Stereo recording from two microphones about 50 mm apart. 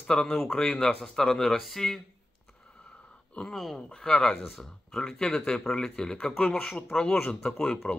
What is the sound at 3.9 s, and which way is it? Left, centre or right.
Speech, centre.